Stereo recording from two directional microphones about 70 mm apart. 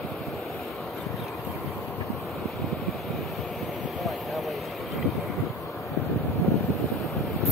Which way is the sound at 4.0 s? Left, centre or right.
Centre.